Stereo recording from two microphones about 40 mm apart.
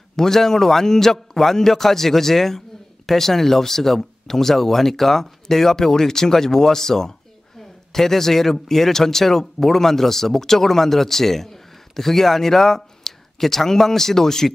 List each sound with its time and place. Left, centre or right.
0.1 s speech: centre